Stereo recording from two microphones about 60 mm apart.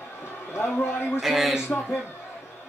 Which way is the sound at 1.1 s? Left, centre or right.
Centre.